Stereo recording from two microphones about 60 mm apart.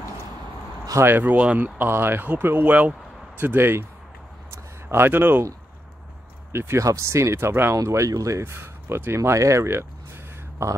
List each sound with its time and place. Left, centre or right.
1.0 s speech: right
1.8 s speech: right
2.6 s speech: right
3.3 s speech: right
4.9 s speech: right
6.5 s speech: right
6.8 s speech: right
7.7 s speech: right
8.5 s speech: right
9.4 s speech: right
10.6 s speech: right